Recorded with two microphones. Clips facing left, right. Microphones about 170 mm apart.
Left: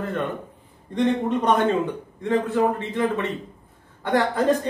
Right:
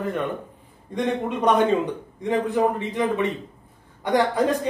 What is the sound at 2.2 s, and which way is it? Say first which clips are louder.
Speech: even; 15° right (ahead or behind).